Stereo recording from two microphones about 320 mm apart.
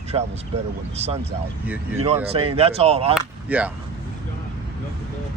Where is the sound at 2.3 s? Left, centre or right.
Centre.